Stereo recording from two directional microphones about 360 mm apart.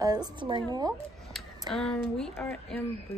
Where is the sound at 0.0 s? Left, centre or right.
Centre.